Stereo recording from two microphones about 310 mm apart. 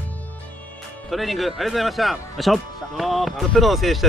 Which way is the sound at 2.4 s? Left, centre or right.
Centre.